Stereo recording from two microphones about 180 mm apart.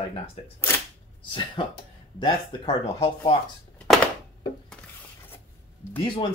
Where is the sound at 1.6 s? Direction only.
25° left (ahead or behind).